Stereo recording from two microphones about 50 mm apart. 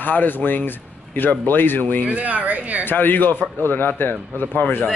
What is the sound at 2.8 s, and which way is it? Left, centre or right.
Speech, left.